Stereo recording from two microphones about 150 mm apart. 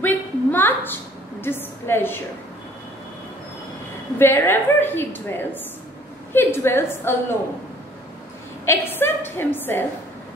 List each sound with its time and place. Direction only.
0.0 s a sound: 15° left (ahead or behind)
1.4 s a woman's voice: 15° left (ahead or behind)
4.2 s a woman's voice: 15° left (ahead or behind)
8.6 s a woman's voice: 15° left (ahead or behind)